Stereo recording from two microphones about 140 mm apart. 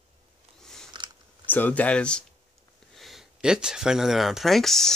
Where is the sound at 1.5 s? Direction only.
15° left (ahead or behind).